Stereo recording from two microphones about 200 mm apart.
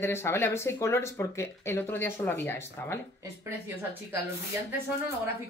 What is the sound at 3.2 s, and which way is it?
Speech, 10° right (ahead or behind).